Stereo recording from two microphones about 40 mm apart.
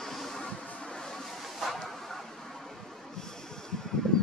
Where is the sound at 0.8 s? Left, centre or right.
Centre.